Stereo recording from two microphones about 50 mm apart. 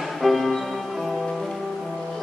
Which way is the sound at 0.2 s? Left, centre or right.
Centre.